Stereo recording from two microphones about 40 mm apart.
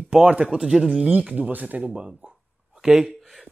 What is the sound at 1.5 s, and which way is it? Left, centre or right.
Speech, right.